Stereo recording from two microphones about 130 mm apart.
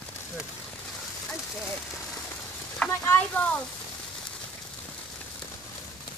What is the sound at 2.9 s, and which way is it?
Speech, 10° left (ahead or behind).